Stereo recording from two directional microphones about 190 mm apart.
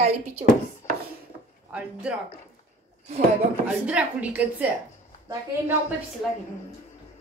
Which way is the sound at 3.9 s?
5° right (ahead or behind).